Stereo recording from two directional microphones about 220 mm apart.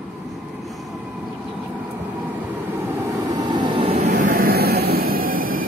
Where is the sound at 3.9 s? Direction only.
35° right (ahead or behind).